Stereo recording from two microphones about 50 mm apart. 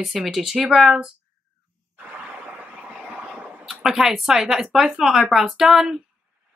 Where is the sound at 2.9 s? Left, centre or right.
Centre.